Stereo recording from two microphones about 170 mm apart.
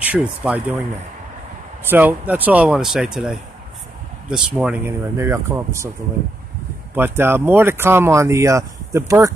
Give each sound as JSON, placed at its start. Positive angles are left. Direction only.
{"t": 0.1, "sound": "speech", "side_deg": -10}
{"t": 1.9, "sound": "speech", "side_deg": -10}
{"t": 5.1, "sound": "speech", "side_deg": -15}
{"t": 7.0, "sound": "speech", "side_deg": -15}